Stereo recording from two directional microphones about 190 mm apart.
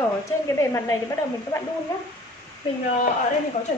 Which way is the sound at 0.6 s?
15° left (ahead or behind).